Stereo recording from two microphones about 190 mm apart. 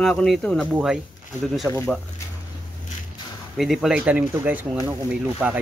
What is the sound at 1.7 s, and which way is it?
Speech, 10° left (ahead or behind).